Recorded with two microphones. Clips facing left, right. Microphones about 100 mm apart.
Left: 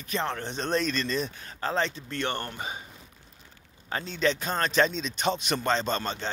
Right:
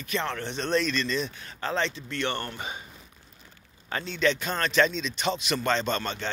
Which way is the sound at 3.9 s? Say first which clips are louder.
Right 1 dB; 30° left (ahead or behind).